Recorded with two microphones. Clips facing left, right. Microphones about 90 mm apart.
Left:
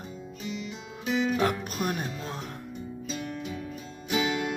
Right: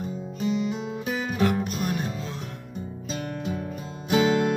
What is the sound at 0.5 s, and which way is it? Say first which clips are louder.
Music: right 11 dB; 40° right (ahead or behind).